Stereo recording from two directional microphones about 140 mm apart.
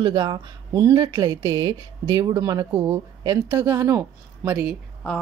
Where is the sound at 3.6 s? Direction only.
20° right (ahead or behind).